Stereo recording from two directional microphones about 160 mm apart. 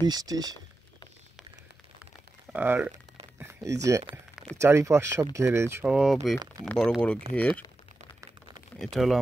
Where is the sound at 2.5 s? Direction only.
10° right (ahead or behind).